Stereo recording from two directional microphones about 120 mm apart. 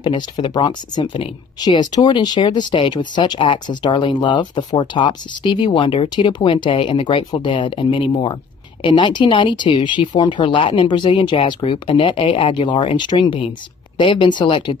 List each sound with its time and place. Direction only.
0.0 s speech: 40° left (ahead or behind)